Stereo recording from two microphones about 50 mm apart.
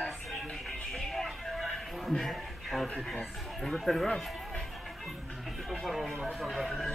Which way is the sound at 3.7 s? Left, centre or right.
Centre.